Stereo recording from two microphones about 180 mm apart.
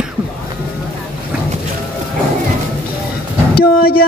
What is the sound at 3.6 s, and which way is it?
Vehicle, 55° left (ahead or behind).